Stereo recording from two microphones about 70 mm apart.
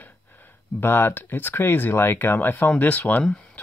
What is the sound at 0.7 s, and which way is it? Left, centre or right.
Speech, left.